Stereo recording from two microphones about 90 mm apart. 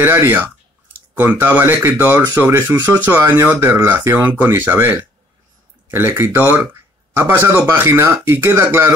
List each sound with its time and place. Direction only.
0.0 s speech: 25° right (ahead or behind)